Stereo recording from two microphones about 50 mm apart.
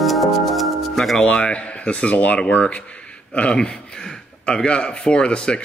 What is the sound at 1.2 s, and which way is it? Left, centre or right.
A man's voice, left.